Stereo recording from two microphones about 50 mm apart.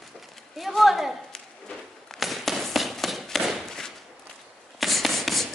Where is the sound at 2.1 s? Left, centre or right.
Centre.